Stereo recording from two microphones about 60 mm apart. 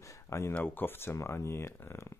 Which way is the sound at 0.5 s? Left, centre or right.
Left.